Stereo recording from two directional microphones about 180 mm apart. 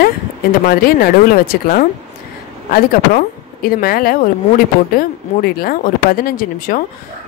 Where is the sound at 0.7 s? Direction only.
55° left (ahead or behind).